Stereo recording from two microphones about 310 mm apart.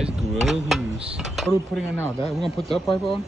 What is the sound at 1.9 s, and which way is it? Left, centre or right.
Speech, centre.